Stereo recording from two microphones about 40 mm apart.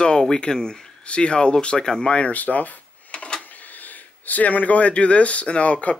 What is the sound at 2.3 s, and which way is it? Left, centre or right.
Speech, left.